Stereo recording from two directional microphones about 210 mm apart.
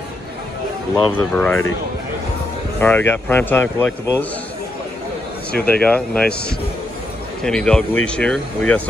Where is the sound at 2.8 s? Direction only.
10° left (ahead or behind).